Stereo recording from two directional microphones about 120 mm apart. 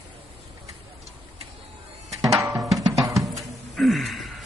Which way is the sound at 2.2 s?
25° right (ahead or behind).